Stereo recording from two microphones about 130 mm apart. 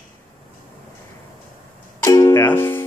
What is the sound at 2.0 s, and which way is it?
Music, 25° left (ahead or behind).